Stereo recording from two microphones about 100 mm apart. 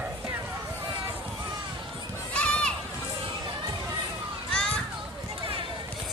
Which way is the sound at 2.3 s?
10° left (ahead or behind).